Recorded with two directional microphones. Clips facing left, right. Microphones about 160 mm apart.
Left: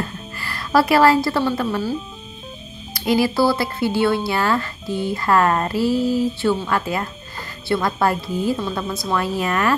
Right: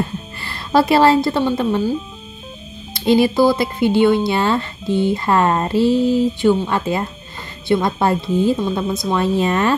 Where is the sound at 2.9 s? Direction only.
25° right (ahead or behind).